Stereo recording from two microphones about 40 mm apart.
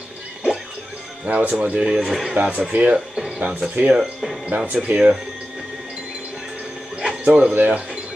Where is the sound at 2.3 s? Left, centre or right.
Right.